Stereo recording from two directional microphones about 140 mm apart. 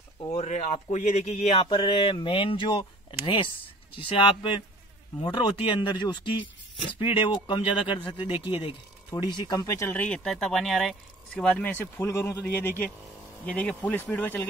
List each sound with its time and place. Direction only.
0.4 s speech: 55° left (ahead or behind)
1.7 s speech: 40° left (ahead or behind)
9.3 s speech: 30° left (ahead or behind); by 14.4 s 15° left (ahead or behind)